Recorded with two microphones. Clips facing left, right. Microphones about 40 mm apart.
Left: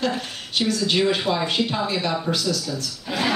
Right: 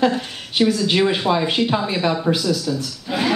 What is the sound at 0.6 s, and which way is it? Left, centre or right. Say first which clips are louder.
A woman's voice: right 4 dB; centre.